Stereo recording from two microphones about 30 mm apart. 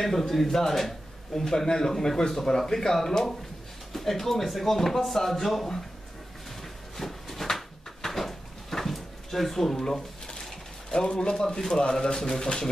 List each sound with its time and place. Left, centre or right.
0.0 s speech: centre
7.0 s a sound: centre; by 11.4 s left
11.9 s speech: left